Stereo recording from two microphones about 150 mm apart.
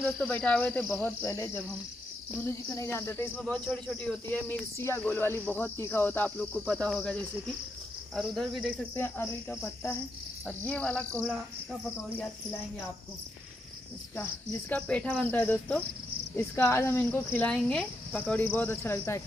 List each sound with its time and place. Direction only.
0.0 s speech: 5° left (ahead or behind)
8.9 s speech: 10° left (ahead or behind)
14.1 s speech: 10° left (ahead or behind)
17.5 s speech: 5° left (ahead or behind)